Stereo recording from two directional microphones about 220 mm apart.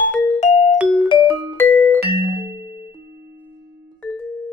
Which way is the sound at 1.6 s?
10° left (ahead or behind).